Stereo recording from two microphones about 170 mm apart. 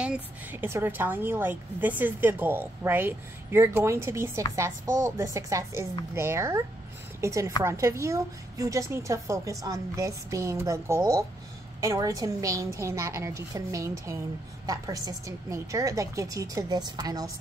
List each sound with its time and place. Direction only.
0.0 s a woman's voice: 10° right (ahead or behind)